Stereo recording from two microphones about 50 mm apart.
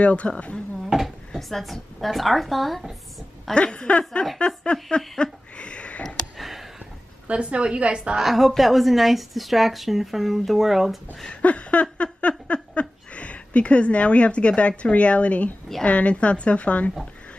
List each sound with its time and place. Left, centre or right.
0.0 s a woman's voice: left
0.8 s speech: centre
3.5 s a woman's voice: left
4.9 s a sound: centre
6.0 s a sound: centre
7.2 s a woman's voice: right
8.2 s speech: centre
11.2 s a sound: left
12.7 s a woman's voice: left